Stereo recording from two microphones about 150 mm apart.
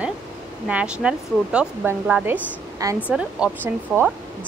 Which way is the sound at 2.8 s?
25° right (ahead or behind).